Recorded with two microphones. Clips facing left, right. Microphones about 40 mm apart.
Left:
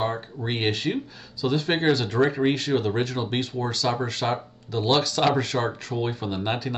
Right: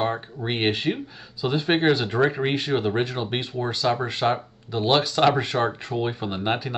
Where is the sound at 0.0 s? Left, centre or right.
Centre.